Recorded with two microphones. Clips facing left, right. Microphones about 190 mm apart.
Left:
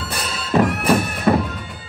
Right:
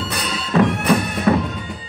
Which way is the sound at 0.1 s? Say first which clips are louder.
Left 1 dB; 5° left (ahead or behind).